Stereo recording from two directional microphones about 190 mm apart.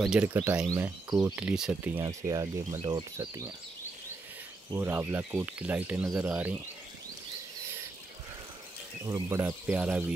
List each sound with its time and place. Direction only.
0.0 s speech: 5° right (ahead or behind)
2.0 s speech: 20° right (ahead or behind)
4.7 s speech: 10° right (ahead or behind)
9.0 s speech: 15° right (ahead or behind)